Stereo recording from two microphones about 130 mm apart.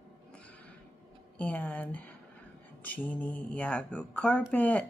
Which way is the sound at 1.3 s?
10° left (ahead or behind).